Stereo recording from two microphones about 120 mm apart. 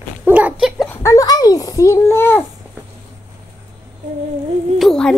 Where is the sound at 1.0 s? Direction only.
30° left (ahead or behind).